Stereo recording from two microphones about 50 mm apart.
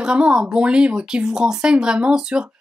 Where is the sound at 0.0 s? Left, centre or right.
Centre.